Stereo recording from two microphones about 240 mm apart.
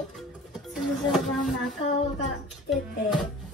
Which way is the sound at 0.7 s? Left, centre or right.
Centre.